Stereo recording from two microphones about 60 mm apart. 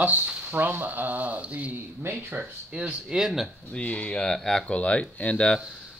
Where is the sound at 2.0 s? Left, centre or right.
Right.